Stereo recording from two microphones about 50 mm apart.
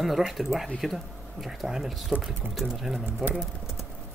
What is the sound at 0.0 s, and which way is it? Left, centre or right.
Speech, centre.